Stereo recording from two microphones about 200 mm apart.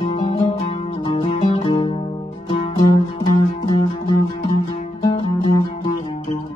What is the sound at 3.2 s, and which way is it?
Music, 20° left (ahead or behind).